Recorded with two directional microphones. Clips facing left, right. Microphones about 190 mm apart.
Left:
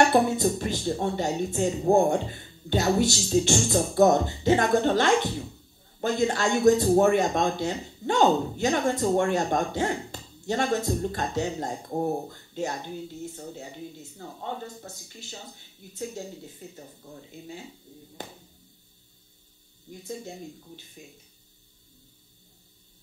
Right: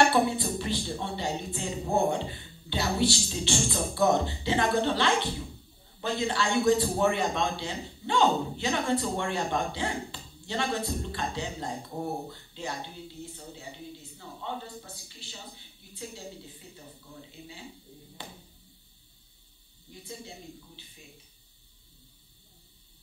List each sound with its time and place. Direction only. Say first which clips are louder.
0.0 s speech: left 3 dB; 45° left (ahead or behind)
19.9 s speech: left 6 dB; 45° left (ahead or behind)